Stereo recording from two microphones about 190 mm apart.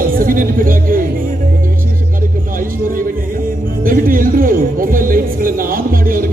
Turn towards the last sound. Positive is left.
turn(degrees=-50)  # may be behind; listen again after turning